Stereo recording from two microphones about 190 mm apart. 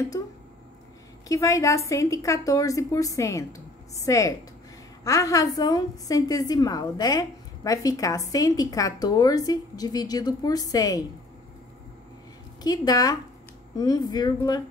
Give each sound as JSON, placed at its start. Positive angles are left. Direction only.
{"t": 1.3, "sound": "a woman's voice", "side_deg": 15}
{"t": 12.6, "sound": "a woman's voice", "side_deg": 20}